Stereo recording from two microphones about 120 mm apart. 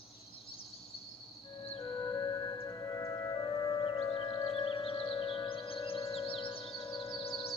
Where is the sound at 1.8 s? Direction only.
30° left (ahead or behind); by 7.5 s 50° left (ahead or behind).